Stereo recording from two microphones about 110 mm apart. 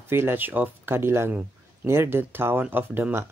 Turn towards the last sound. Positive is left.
turn(degrees=-15)  # may be behind; listen again after turning